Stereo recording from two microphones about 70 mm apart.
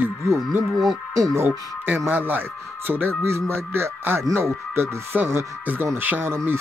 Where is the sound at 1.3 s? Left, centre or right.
Right.